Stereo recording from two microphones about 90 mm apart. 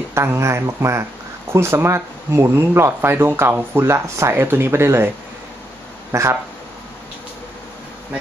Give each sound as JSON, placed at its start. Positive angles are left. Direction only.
{"t": 0.1, "sound": "speech", "side_deg": -30}
{"t": 6.1, "sound": "speech", "side_deg": -30}